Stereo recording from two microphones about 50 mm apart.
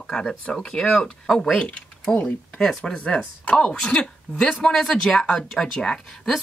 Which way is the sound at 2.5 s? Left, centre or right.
Centre.